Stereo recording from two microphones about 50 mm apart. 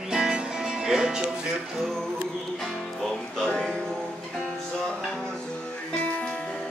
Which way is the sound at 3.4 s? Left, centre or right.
Centre.